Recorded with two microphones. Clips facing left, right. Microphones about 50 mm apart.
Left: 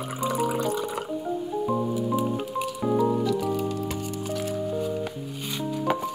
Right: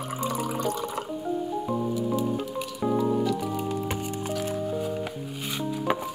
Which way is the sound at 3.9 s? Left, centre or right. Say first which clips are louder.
Even; right.